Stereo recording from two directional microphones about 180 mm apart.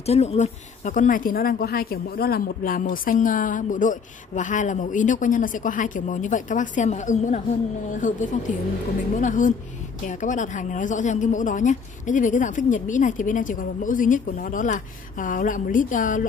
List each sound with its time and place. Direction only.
0.0 s speech: 35° left (ahead or behind)